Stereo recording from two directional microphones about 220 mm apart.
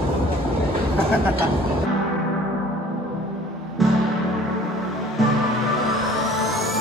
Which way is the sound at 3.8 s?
Centre (ahead or behind).